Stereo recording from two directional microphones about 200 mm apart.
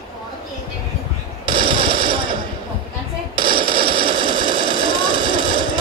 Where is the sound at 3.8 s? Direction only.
25° right (ahead or behind).